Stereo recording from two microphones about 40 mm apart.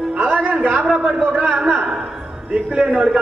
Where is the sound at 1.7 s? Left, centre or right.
Right.